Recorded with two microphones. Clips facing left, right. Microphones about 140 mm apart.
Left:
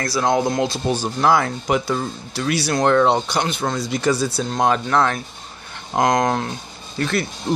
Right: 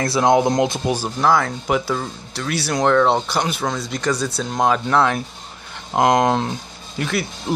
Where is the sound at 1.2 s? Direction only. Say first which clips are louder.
Even; 5° left (ahead or behind).